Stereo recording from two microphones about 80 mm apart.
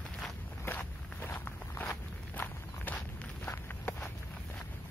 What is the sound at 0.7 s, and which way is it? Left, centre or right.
Walk, left.